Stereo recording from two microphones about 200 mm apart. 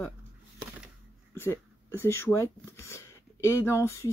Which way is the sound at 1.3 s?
10° left (ahead or behind).